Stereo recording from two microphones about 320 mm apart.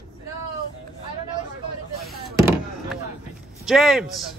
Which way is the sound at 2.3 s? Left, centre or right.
Centre.